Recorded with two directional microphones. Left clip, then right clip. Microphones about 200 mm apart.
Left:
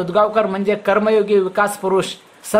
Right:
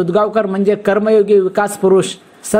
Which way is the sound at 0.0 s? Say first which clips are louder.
Right 1 dB; 15° right (ahead or behind).